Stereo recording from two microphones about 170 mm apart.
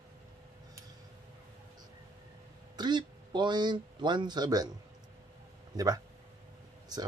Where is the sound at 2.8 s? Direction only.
25° right (ahead or behind).